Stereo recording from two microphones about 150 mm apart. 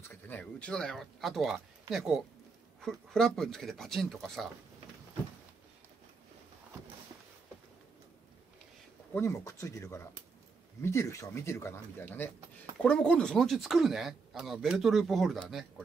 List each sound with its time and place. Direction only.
0.1 s speech: 10° left (ahead or behind)
9.1 s speech: 20° left (ahead or behind); by 15.6 s centre (ahead or behind)